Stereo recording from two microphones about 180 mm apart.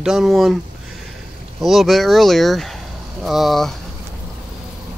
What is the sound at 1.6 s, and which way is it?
Speech, centre (ahead or behind).